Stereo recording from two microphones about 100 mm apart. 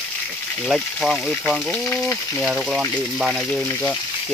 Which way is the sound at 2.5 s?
5° right (ahead or behind).